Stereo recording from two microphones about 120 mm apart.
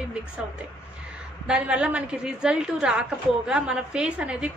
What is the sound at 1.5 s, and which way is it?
A woman's voice, 10° right (ahead or behind).